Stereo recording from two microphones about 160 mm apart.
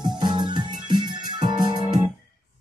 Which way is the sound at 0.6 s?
25° right (ahead or behind).